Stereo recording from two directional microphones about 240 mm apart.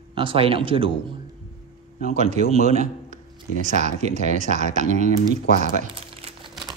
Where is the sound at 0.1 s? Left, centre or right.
Right.